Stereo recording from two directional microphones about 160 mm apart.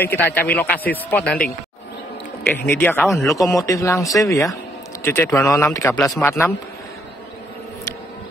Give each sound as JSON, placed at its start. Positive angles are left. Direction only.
{"t": 0.0, "sound": "speech", "side_deg": 15}
{"t": 2.7, "sound": "speech", "side_deg": 15}
{"t": 3.0, "sound": "speech", "side_deg": 0}
{"t": 3.5, "sound": "speech", "side_deg": 20}